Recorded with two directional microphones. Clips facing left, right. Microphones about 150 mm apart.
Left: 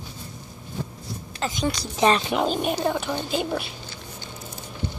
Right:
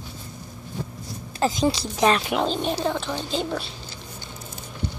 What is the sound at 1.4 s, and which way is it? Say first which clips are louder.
Speech: right 5 dB; 30° right (ahead or behind).